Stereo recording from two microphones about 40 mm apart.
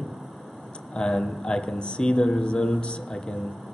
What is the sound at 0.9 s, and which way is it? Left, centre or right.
A man's voice, centre.